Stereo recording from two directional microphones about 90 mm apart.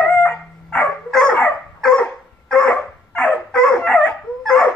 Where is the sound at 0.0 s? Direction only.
10° left (ahead or behind).